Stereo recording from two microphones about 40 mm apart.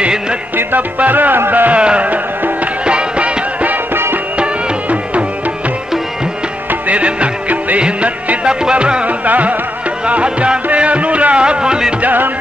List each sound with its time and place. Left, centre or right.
0.7 s music: right
1.8 s music: right
2.0 s music: right
2.8 s music: right
3.9 s music: right
6.9 s music: right
9.0 s music: right
10.0 s music: right
12.0 s music: right